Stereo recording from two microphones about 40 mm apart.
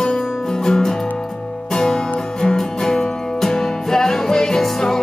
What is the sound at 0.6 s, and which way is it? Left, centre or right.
Music, centre.